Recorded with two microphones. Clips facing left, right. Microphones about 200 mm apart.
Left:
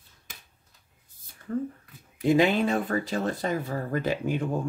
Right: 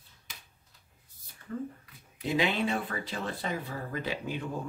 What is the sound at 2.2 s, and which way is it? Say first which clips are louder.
Speech: left 7 dB; 45° left (ahead or behind).